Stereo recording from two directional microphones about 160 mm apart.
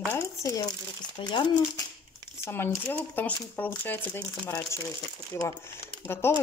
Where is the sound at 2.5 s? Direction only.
15° left (ahead or behind).